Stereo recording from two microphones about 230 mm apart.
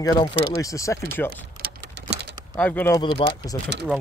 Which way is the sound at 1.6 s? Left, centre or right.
Right.